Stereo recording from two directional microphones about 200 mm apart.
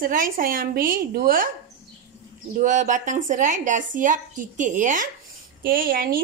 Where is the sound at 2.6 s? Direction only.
40° right (ahead or behind).